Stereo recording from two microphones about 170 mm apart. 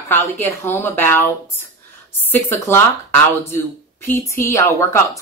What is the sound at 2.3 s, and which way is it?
Speech, 15° left (ahead or behind).